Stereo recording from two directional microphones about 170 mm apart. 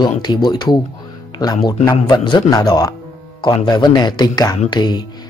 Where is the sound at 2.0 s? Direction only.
25° left (ahead or behind).